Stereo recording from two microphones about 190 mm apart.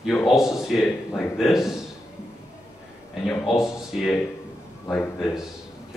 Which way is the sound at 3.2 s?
Centre (ahead or behind).